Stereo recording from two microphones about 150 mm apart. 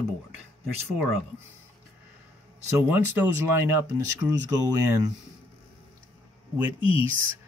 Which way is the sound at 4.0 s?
25° right (ahead or behind).